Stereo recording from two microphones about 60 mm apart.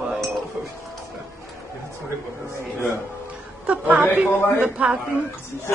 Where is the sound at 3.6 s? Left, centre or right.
Right.